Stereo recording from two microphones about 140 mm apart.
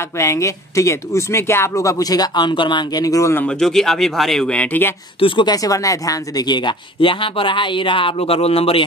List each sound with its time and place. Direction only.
0.2 s speech: 20° left (ahead or behind)
3.4 s speech: 5° left (ahead or behind)
5.2 s speech: 35° left (ahead or behind)